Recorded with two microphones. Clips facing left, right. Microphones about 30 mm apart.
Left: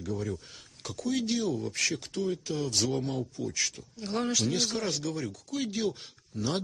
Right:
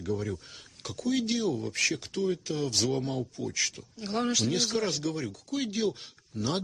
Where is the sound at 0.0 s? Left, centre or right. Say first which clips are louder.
Right 2 dB; centre.